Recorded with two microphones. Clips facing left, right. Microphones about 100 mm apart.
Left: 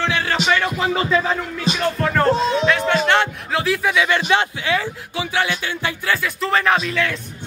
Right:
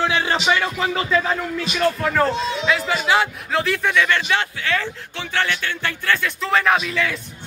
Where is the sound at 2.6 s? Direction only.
5° right (ahead or behind).